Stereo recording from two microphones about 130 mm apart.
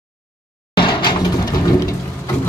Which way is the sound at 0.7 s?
35° left (ahead or behind).